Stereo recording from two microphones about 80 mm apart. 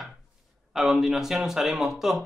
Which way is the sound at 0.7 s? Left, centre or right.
Centre.